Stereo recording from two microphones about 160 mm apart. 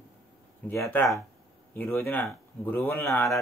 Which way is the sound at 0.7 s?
10° left (ahead or behind).